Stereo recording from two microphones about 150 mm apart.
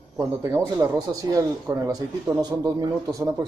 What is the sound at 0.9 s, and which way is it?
Speech, 25° right (ahead or behind).